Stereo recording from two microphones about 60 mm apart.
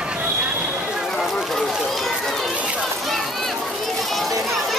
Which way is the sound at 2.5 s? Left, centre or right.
Right.